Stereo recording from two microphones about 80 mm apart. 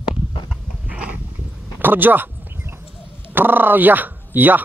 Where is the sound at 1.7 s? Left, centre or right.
Right.